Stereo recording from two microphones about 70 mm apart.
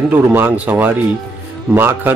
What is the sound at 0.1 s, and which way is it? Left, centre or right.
Speech, right.